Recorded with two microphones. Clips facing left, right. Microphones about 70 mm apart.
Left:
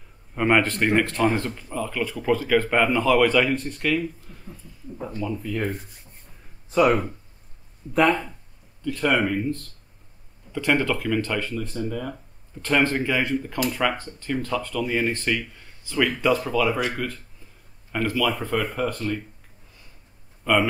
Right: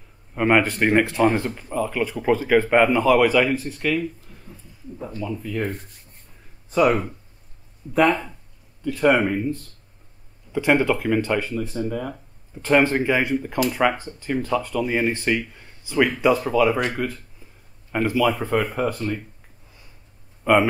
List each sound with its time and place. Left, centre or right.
0.3 s speech: centre
20.5 s speech: right